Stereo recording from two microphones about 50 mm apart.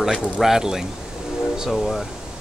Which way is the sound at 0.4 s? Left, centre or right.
Centre.